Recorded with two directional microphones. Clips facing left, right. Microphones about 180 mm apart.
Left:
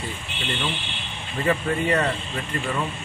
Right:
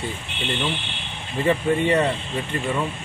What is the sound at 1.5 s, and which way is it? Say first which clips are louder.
Speech: right 3 dB; 25° right (ahead or behind).